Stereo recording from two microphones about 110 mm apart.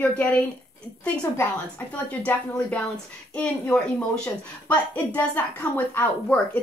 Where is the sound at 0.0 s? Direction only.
15° left (ahead or behind).